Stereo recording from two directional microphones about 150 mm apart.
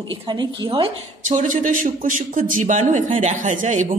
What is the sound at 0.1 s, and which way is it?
Speech, 30° right (ahead or behind).